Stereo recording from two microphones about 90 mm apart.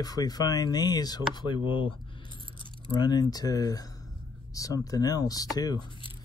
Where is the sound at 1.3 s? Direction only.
60° left (ahead or behind).